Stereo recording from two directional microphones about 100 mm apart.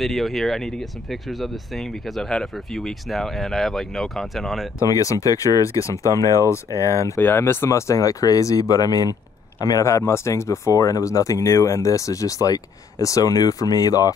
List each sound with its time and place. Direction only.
0.0 s speech: centre (ahead or behind)
4.7 s speech: 35° left (ahead or behind)
7.2 s speech: 20° left (ahead or behind); by 14.1 s 40° left (ahead or behind)